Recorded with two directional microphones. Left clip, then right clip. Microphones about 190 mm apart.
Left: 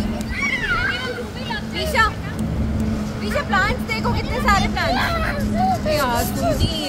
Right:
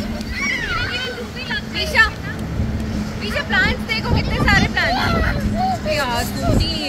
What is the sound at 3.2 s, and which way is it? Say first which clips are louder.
Music: right 2 dB; 60° left (ahead or behind).